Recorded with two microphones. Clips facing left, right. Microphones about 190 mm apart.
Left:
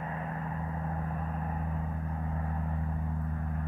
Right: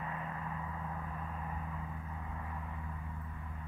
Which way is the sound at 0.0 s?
40° left (ahead or behind).